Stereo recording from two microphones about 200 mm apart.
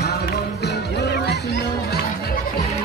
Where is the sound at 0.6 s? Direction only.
55° left (ahead or behind).